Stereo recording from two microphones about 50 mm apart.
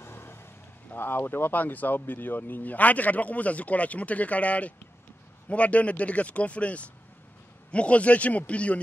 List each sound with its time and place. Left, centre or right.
0.0 s vehicle: left
0.9 s speech: left